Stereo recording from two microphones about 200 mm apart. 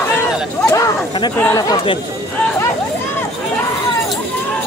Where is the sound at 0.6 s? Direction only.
15° left (ahead or behind).